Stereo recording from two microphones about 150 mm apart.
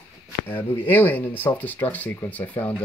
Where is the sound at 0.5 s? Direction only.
15° left (ahead or behind).